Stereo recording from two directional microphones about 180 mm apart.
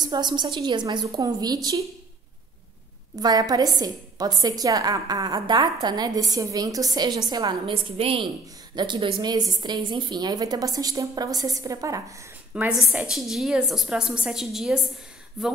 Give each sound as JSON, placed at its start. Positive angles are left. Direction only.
{"t": 0.0, "sound": "a woman's voice", "side_deg": -25}
{"t": 3.2, "sound": "a woman's voice", "side_deg": -20}